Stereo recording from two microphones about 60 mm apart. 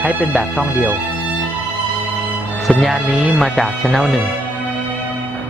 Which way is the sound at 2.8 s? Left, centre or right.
Centre.